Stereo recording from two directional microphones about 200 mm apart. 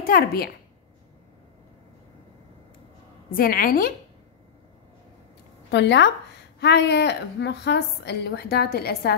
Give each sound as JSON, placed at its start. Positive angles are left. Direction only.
{"t": 0.0, "sound": "a woman's voice", "side_deg": 50}
{"t": 3.3, "sound": "a woman's voice", "side_deg": 45}
{"t": 5.7, "sound": "a woman's voice", "side_deg": 60}